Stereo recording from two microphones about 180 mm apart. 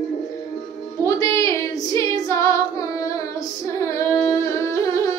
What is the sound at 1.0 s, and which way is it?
Female singing, 15° left (ahead or behind).